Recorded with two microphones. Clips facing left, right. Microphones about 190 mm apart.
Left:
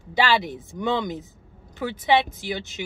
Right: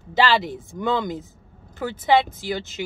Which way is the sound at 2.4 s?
15° left (ahead or behind).